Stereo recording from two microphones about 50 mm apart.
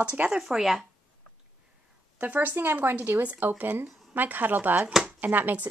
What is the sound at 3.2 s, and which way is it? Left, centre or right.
Speech, right.